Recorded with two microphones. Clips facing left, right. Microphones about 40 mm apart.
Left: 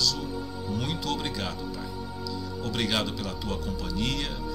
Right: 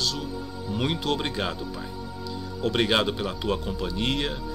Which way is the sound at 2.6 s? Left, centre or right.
Right.